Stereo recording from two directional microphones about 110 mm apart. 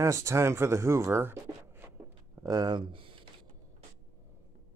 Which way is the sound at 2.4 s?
40° right (ahead or behind).